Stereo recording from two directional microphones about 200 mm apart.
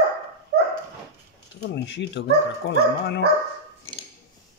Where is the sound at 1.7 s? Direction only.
60° left (ahead or behind).